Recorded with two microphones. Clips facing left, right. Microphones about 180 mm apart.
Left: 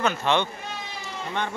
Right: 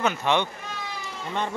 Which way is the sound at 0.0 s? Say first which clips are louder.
Even; 15° right (ahead or behind).